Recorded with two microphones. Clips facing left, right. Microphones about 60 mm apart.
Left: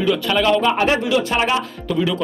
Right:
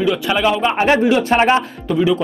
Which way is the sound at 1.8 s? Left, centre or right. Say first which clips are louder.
Right 5 dB; centre.